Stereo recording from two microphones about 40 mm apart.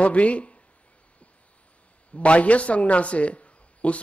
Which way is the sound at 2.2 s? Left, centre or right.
Left.